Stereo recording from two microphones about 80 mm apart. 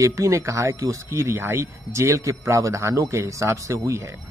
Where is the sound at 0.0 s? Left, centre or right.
Right.